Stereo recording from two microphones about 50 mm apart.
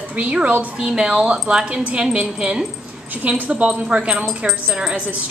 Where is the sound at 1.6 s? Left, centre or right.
Right.